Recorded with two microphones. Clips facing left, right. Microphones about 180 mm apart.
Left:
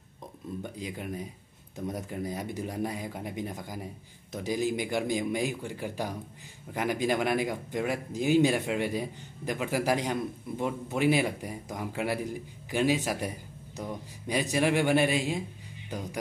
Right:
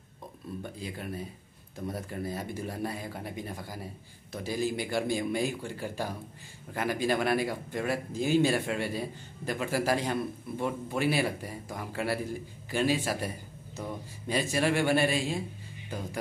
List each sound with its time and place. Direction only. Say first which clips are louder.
0.6 s speech: left 1 dB; 15° left (ahead or behind)